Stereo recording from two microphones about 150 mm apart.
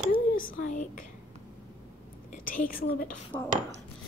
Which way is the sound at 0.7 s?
55° left (ahead or behind).